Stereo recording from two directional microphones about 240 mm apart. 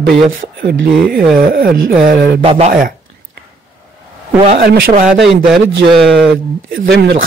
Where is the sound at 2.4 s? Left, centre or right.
Right.